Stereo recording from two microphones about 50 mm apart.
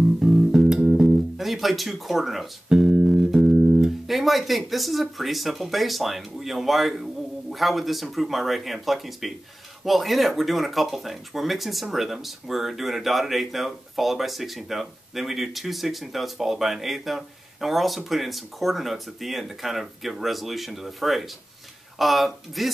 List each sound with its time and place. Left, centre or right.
0.2 s music: centre
1.4 s speech: centre
2.7 s music: centre
3.4 s music: right
4.1 s speech: centre